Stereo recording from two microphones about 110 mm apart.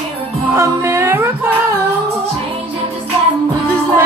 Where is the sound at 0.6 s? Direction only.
25° right (ahead or behind).